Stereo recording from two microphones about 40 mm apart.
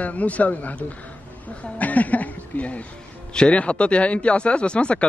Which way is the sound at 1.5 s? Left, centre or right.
Left.